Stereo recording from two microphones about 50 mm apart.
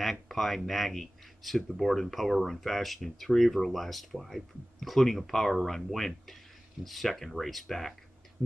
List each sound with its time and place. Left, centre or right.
0.0 s speech: centre